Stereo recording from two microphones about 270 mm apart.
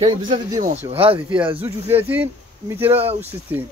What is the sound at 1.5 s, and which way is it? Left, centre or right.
Speech, centre.